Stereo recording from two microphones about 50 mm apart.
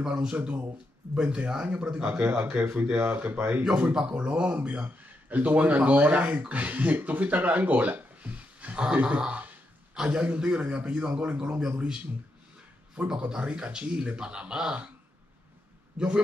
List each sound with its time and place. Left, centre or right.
0.0 s speech: centre
3.9 s speech: centre
9.9 s a man's voice: centre
12.9 s speech: right
16.0 s a man's voice: centre